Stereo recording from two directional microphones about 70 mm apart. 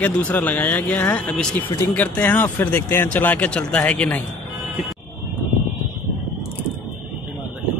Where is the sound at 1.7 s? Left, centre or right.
Left.